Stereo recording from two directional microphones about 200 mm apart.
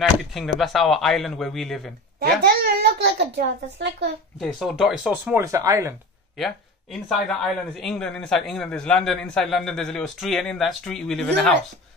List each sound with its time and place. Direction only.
0.0 s a man's voice: centre (ahead or behind)
2.4 s a child's voice: 55° right (ahead or behind)
4.4 s a man's voice: centre (ahead or behind); by 5.9 s 15° right (ahead or behind)
6.3 s a man's voice: centre (ahead or behind)